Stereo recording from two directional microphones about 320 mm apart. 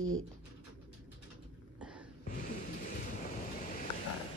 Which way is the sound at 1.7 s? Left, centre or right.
Centre.